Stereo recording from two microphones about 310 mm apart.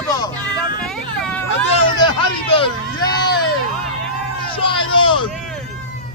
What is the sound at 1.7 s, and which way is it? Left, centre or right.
Vehicle, centre.